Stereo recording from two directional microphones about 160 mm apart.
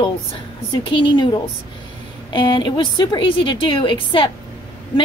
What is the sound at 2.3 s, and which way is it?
A woman's voice, 30° left (ahead or behind).